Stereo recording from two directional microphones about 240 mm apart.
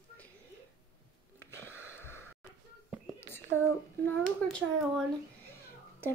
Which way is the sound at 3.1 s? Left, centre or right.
Centre.